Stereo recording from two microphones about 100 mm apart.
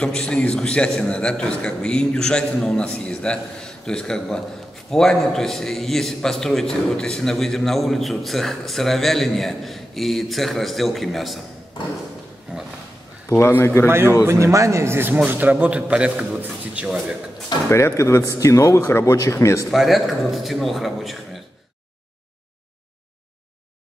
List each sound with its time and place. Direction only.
0.0 s a man's voice: 10° left (ahead or behind)
13.3 s speech: 20° left (ahead or behind)
13.8 s a man's voice: 25° right (ahead or behind)
17.6 s speech: 25° left (ahead or behind)
19.7 s a man's voice: centre (ahead or behind)